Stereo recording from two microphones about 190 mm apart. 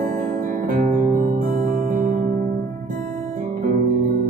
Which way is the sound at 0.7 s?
40° right (ahead or behind).